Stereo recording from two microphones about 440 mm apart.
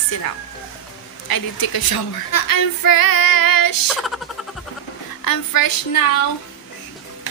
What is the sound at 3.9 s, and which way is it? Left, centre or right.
Speech, centre.